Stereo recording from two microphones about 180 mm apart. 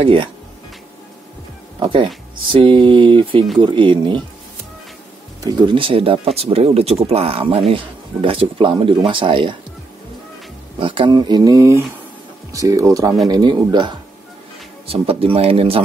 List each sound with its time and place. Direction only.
0.0 s speech: 30° right (ahead or behind)
1.8 s speech: 25° right (ahead or behind)
5.4 s speech: 25° right (ahead or behind)
10.8 s speech: 30° right (ahead or behind)